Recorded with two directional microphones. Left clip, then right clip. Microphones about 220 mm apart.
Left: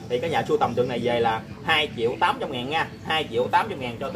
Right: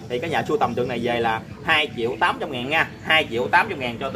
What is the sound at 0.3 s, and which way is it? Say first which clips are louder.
Speech: right 2 dB; 30° right (ahead or behind).